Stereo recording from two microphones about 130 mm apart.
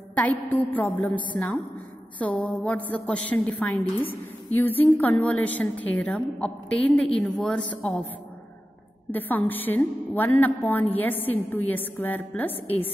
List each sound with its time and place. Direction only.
0.1 s a woman's voice: 10° left (ahead or behind)
9.1 s a woman's voice: 15° left (ahead or behind)